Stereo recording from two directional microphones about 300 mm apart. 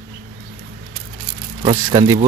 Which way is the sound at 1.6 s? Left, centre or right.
Centre.